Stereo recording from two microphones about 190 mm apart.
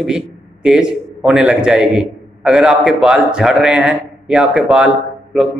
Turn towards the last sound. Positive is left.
turn(degrees=-5)  # may be behind; listen again after turning